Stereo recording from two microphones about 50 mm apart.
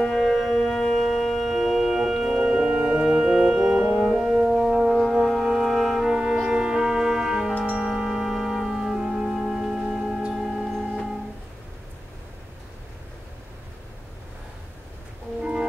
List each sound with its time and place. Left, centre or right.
0.0 s music: centre
3.7 s music: centre
4.5 s brass instrument: centre
7.7 s music: centre